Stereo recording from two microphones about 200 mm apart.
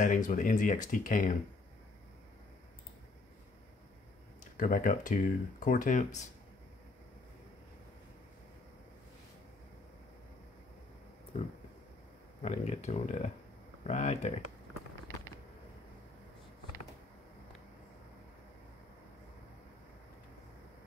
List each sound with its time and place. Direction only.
0.0 s speech: 40° left (ahead or behind)
4.6 s speech: 40° left (ahead or behind)
12.4 s speech: 35° left (ahead or behind)